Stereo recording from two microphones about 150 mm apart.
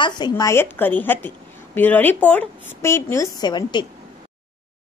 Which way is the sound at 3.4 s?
30° left (ahead or behind).